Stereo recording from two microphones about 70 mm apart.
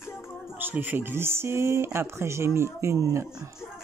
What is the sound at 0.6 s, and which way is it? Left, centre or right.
Speech, right.